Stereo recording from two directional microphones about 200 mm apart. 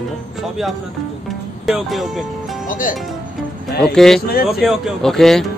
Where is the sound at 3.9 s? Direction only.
Centre (ahead or behind).